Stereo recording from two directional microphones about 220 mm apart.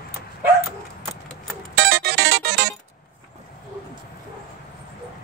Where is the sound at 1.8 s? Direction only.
45° right (ahead or behind).